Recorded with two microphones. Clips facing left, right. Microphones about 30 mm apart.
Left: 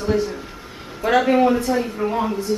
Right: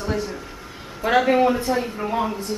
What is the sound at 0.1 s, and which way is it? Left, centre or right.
A man's voice, centre.